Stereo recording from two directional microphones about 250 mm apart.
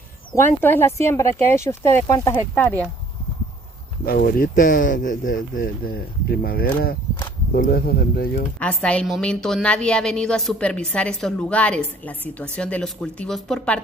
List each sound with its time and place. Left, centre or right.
0.6 s speech: centre
4.0 s speech: left
8.5 s a woman's voice: centre